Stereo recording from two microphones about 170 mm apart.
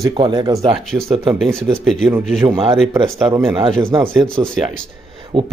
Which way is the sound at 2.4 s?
30° right (ahead or behind).